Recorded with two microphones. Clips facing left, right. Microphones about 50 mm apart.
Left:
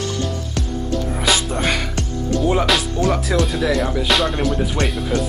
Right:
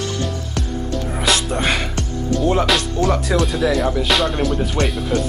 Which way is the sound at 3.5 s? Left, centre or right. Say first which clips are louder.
Right 1 dB; centre.